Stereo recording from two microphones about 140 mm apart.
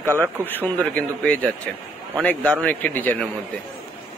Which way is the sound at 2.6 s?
10° left (ahead or behind).